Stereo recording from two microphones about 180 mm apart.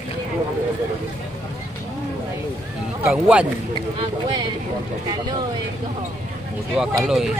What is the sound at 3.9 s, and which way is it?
Speech, 25° right (ahead or behind).